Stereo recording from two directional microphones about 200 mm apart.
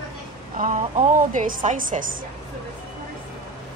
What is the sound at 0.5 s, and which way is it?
A woman's voice, 40° right (ahead or behind).